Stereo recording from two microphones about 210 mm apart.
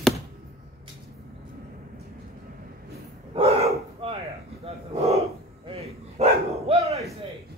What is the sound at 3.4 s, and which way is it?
Bow-wow, 30° right (ahead or behind).